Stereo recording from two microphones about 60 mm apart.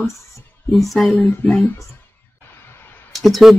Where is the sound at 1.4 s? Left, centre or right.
Left.